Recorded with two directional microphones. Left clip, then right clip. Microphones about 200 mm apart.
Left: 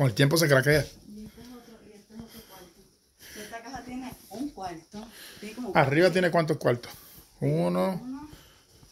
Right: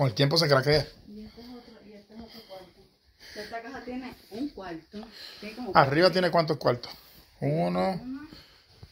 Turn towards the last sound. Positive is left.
turn(degrees=20)  # may be behind; listen again after turning